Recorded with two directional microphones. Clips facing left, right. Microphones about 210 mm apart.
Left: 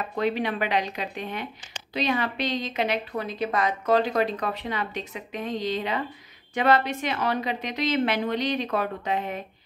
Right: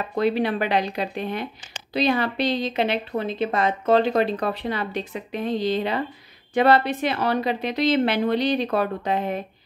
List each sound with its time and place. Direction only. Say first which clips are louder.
0.1 s a woman's voice: right 5 dB; 35° right (ahead or behind)